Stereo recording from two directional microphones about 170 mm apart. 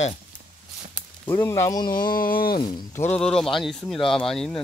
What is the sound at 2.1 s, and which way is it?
Speech, 55° left (ahead or behind).